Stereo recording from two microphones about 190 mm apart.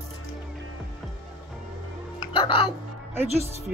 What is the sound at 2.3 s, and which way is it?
Music, 30° left (ahead or behind).